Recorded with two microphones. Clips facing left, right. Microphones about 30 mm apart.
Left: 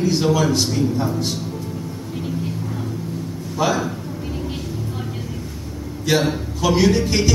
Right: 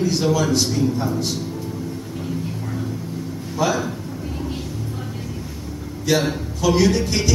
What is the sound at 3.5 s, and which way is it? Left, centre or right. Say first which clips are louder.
Speech: left 1 dB; centre.